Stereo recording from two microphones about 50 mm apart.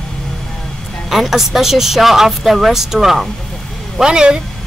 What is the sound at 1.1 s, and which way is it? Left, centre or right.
Speech, centre.